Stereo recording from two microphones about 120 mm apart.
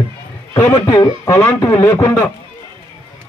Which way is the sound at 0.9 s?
30° left (ahead or behind).